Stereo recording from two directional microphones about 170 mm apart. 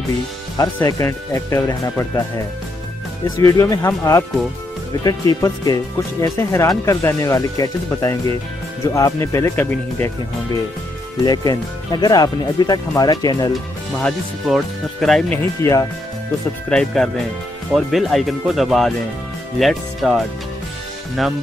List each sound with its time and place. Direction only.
0.6 s speech: 20° left (ahead or behind)
3.3 s speech: 15° left (ahead or behind)
11.2 s speech: 25° left (ahead or behind)
14.0 s speech: centre (ahead or behind); by 15.9 s 15° left (ahead or behind)
16.6 s speech: 5° left (ahead or behind)